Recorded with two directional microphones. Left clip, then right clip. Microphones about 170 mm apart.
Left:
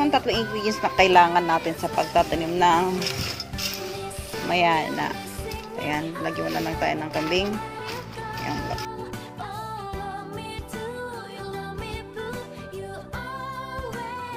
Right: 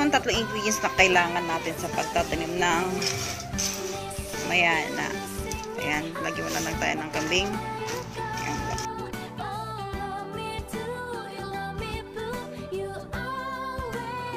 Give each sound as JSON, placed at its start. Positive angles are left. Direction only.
{"t": 0.0, "sound": "speech", "side_deg": 10}
{"t": 4.5, "sound": "speech", "side_deg": 30}